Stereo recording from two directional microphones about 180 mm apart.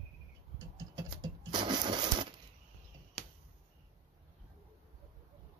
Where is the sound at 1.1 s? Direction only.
25° right (ahead or behind).